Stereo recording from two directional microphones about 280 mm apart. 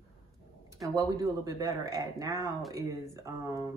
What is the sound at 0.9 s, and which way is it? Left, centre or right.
Speech, centre.